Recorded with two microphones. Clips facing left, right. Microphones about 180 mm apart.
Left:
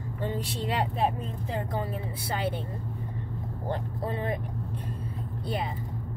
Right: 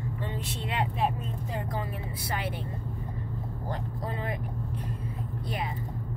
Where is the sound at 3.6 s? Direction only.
30° left (ahead or behind).